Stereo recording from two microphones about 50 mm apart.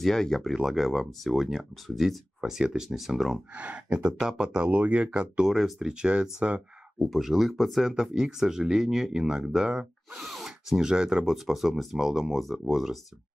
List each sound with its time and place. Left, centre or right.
0.0 s speech: centre
2.4 s speech: centre
3.5 s speech: right
7.1 s speech: centre